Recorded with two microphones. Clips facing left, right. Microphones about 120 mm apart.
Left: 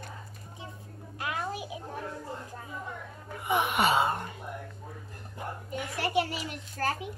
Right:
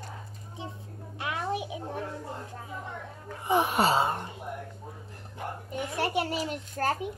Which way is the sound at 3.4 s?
35° right (ahead or behind).